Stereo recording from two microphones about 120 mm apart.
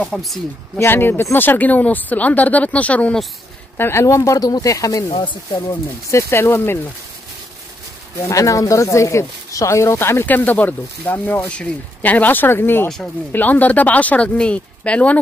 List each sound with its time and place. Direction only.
0.0 s speech: centre (ahead or behind)
0.7 s speech: 20° left (ahead or behind)
5.1 s speech: 45° left (ahead or behind)
6.0 s speech: 25° left (ahead or behind)
8.3 s speech: 25° left (ahead or behind)
12.8 s speech: 5° left (ahead or behind)